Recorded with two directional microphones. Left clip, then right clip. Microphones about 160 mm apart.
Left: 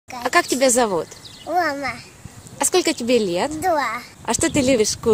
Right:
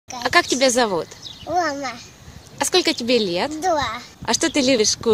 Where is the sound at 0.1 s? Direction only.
10° left (ahead or behind).